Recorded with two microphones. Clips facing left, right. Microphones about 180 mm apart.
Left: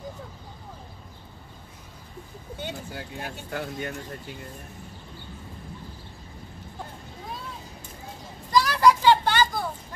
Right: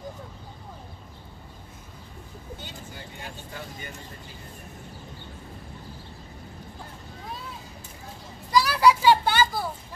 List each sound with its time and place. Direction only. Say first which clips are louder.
2.6 s speech: left 6 dB; 65° left (ahead or behind)
8.5 s vehicle: even; 5° right (ahead or behind)